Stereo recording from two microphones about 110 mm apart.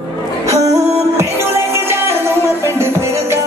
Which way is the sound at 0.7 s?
25° right (ahead or behind).